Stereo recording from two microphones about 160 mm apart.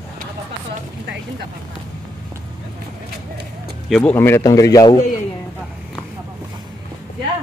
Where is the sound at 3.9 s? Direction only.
10° left (ahead or behind).